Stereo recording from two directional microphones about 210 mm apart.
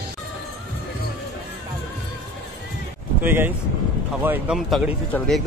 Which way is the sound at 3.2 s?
10° right (ahead or behind).